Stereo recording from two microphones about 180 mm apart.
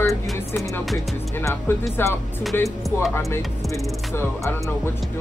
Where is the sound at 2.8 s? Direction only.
Centre (ahead or behind).